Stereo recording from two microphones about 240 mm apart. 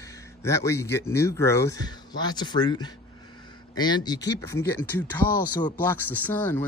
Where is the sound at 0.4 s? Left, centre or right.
Centre.